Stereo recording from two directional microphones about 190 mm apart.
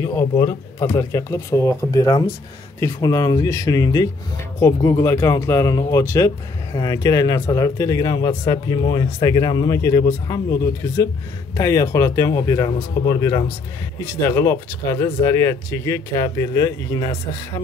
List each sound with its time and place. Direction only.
0.0 s speech: 20° left (ahead or behind)